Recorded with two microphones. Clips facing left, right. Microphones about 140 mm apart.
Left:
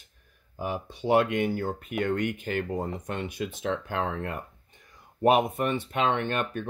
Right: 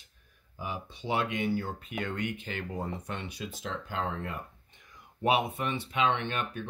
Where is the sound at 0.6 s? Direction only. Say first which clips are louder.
Left 6 dB; 50° left (ahead or behind).